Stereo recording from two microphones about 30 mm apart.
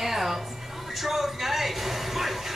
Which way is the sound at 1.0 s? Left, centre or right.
Centre.